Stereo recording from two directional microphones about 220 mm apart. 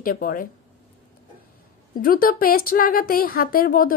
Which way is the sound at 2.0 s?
40° left (ahead or behind).